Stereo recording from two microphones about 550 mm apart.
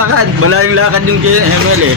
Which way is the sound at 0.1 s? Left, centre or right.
Right.